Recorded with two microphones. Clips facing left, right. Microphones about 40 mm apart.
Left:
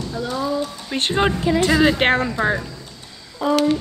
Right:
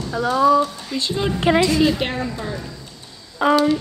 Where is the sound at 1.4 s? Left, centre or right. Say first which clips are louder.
Right 2 dB; right.